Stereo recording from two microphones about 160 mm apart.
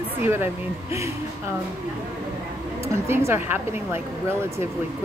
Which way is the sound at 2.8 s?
15° right (ahead or behind).